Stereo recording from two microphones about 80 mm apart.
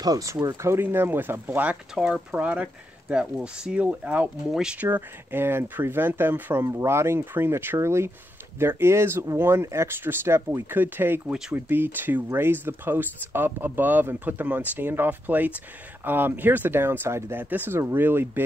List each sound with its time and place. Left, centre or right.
0.0 s speech: right
0.6 s speech: right
4.5 s speech: centre
4.7 s speech: right
11.2 s speech: centre
11.5 s speech: right